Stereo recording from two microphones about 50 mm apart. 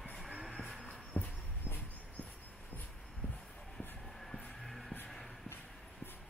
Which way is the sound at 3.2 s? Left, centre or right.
Left.